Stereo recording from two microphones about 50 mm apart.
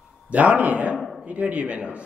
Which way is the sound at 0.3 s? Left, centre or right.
Right.